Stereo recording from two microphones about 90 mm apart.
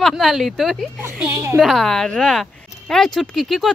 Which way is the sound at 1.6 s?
Centre (ahead or behind).